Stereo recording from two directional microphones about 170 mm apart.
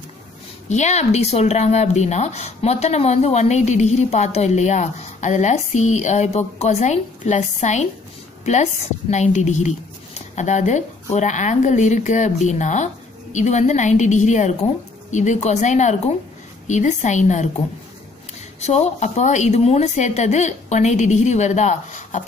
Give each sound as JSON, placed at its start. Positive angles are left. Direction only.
{"t": 0.7, "sound": "speech", "side_deg": 40}
{"t": 9.1, "sound": "speech", "side_deg": 45}
{"t": 18.6, "sound": "speech", "side_deg": 40}